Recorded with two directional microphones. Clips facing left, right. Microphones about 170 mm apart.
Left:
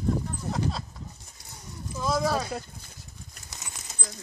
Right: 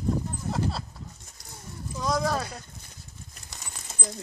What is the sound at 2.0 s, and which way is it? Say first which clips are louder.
Speech: left 1 dB; 5° left (ahead or behind).